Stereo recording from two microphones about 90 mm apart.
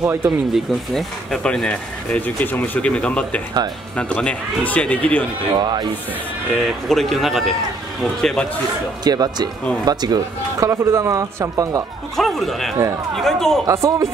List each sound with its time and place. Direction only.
0.0 s speech: 30° right (ahead or behind)
0.5 s speech: 5° left (ahead or behind)
5.6 s speech: 55° right (ahead or behind)
6.5 s a man's voice: 5° left (ahead or behind)
9.0 s speech: 50° right (ahead or behind)
12.2 s a man's voice: centre (ahead or behind)
13.7 s speech: 35° right (ahead or behind)